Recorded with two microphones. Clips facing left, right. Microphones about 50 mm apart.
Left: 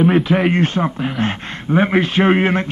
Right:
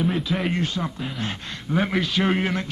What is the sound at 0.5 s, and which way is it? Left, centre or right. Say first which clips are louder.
A man's voice: left 9 dB; left.